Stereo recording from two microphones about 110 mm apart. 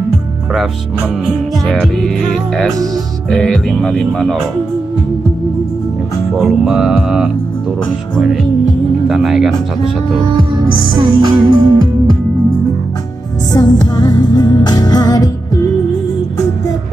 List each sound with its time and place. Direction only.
1.7 s music: 5° left (ahead or behind)
6.3 s music: centre (ahead or behind)
9.1 s music: 5° right (ahead or behind)
10.5 s music: 45° right (ahead or behind)
13.6 s music: 35° left (ahead or behind)